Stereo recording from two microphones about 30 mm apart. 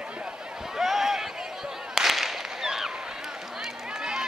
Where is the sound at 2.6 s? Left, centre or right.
Centre.